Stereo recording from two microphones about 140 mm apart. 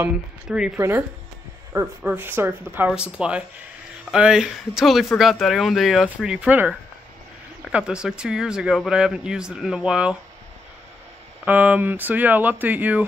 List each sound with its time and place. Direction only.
0.0 s speech: 5° right (ahead or behind)
0.7 s speech: 20° right (ahead or behind)
7.7 s speech: 5° right (ahead or behind)
11.4 s speech: 10° right (ahead or behind)